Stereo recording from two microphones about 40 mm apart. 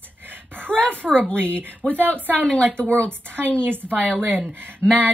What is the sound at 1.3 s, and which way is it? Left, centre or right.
A woman's voice, right.